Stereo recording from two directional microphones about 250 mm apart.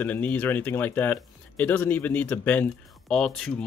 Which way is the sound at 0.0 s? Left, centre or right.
Centre.